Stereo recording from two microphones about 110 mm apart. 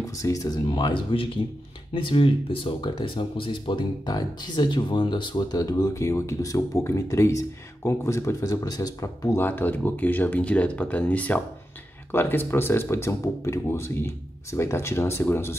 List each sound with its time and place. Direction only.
0.1 s speech: 30° left (ahead or behind)
9.4 s speech: 15° left (ahead or behind)